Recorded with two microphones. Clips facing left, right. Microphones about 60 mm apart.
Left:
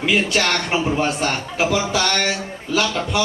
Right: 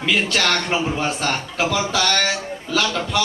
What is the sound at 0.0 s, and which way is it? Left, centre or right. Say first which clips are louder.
Speech: left 1 dB; centre.